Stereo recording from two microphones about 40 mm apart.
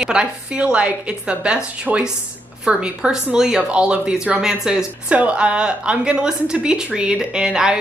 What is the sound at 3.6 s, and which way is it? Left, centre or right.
A woman's voice, right.